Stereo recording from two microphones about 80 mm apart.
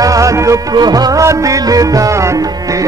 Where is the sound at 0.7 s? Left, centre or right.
Right.